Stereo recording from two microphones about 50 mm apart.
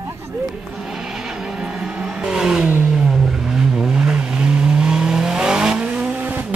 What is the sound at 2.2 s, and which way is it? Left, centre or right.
Vehicle, centre.